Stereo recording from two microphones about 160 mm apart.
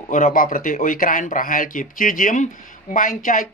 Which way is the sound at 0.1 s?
55° left (ahead or behind).